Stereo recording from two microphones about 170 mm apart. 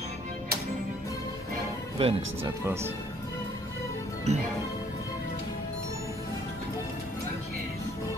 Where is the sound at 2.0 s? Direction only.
35° right (ahead or behind).